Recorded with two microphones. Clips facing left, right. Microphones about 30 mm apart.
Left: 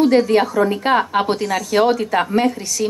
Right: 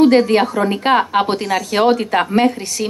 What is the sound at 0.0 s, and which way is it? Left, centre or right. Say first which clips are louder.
A woman's voice: right 2 dB; right.